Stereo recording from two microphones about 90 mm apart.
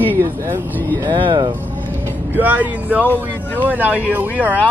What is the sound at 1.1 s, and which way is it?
Speech, 65° right (ahead or behind).